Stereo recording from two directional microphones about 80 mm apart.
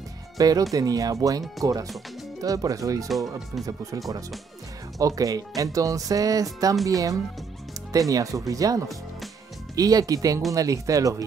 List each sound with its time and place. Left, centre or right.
0.4 s speech: right
3.1 s speech: centre
4.9 s speech: right